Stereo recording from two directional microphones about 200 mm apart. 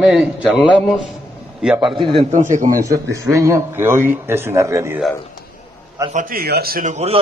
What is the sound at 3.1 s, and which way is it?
A man's voice, 15° right (ahead or behind).